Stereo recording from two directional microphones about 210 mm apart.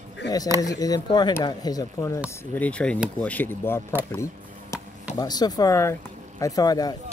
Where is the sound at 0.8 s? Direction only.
20° left (ahead or behind).